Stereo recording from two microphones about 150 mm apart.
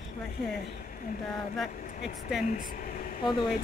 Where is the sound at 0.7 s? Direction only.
70° left (ahead or behind).